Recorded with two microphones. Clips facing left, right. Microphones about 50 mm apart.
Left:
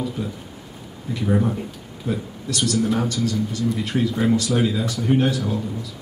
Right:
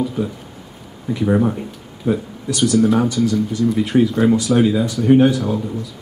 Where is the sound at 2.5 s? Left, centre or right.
Centre.